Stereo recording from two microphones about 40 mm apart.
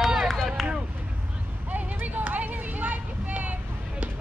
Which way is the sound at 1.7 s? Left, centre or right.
Right.